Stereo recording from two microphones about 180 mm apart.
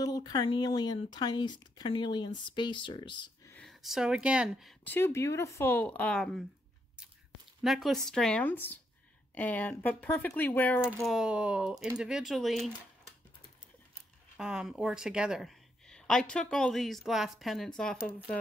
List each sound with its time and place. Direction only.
0.0 s speech: 20° left (ahead or behind)
3.5 s speech: centre (ahead or behind)
4.8 s speech: 10° left (ahead or behind)
7.6 s a woman's voice: centre (ahead or behind)
10.9 s a woman's voice: 5° right (ahead or behind)
14.3 s a woman's voice: 5° right (ahead or behind)